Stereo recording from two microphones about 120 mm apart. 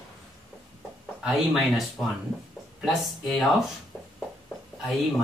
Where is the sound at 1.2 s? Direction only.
5° right (ahead or behind).